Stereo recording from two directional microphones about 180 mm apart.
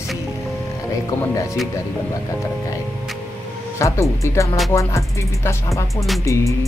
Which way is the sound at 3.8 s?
15° left (ahead or behind).